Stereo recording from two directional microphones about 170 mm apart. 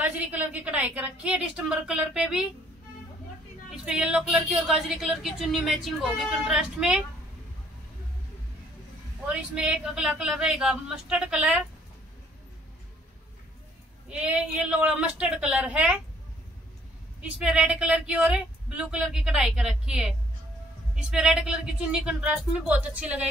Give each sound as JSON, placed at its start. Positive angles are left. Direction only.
{"t": 0.0, "sound": "a woman's voice", "side_deg": -10}
{"t": 3.7, "sound": "a woman's voice", "side_deg": -5}
{"t": 9.3, "sound": "a woman's voice", "side_deg": -5}
{"t": 14.1, "sound": "a woman's voice", "side_deg": -5}
{"t": 17.2, "sound": "a woman's voice", "side_deg": -5}